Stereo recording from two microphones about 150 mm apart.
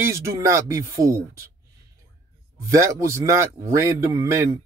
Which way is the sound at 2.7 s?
20° right (ahead or behind).